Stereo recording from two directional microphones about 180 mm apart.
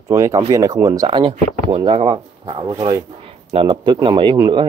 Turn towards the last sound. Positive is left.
turn(degrees=-25)  # may be behind; listen again after turning